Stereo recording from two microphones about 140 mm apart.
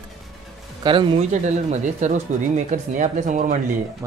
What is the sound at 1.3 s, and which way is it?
Speech, 55° right (ahead or behind).